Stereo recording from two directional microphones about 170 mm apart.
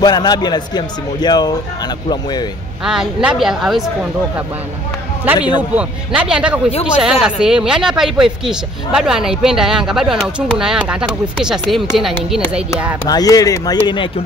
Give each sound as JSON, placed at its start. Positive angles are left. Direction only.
{"t": 0.0, "sound": "a man's voice", "side_deg": 25}
{"t": 2.8, "sound": "speech", "side_deg": -5}
{"t": 5.2, "sound": "speech", "side_deg": -10}
{"t": 13.0, "sound": "a man's voice", "side_deg": 20}